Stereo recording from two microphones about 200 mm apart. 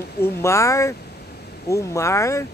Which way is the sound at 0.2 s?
15° left (ahead or behind).